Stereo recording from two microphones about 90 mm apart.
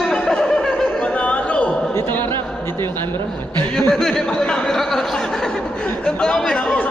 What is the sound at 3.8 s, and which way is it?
Speech, 5° left (ahead or behind).